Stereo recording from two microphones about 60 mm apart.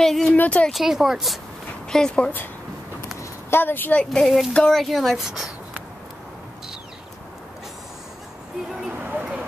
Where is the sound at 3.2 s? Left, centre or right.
Left.